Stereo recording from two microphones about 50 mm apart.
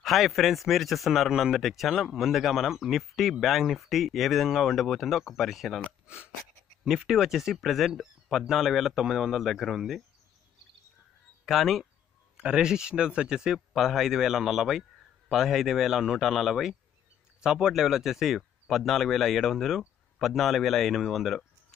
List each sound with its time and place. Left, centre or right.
0.0 s speech: centre
6.0 s speech: right
6.9 s speech: centre
11.4 s speech: centre
12.4 s speech: centre
17.4 s speech: centre